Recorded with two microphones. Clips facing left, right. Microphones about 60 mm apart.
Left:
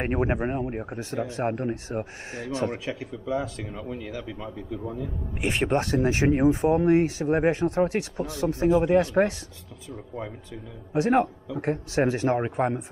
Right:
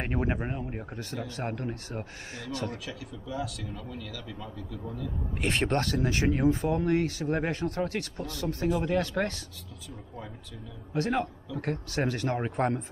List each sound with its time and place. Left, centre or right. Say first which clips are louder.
0.0 s speech: left 5 dB; left
5.4 s speech: left 3 dB; centre
5.9 s speech: left 5 dB; left
11.1 s speech: left 10 dB; left
12.5 s speech: left 2 dB; centre